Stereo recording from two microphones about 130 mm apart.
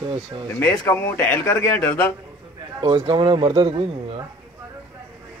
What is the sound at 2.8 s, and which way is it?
Speech, 30° right (ahead or behind).